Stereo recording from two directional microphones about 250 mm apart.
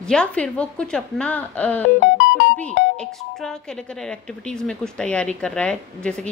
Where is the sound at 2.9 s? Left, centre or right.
Centre.